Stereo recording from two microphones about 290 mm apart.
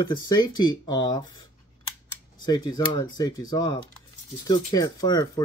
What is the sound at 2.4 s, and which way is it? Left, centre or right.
Speech, centre.